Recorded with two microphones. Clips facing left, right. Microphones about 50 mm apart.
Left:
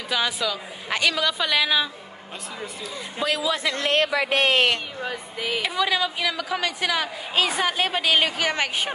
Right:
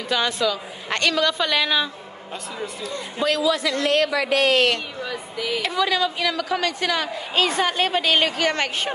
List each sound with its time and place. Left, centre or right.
0.1 s a woman's voice: centre
3.5 s speech: left
5.0 s a sound: left
5.6 s a woman's voice: centre